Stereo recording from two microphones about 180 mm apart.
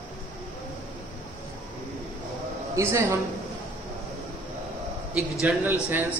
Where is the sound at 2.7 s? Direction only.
15° right (ahead or behind).